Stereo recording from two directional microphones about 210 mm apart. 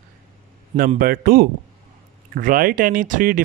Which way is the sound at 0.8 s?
40° right (ahead or behind).